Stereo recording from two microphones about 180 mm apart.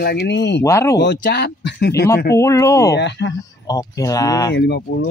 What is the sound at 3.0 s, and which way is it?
Speech, 75° left (ahead or behind).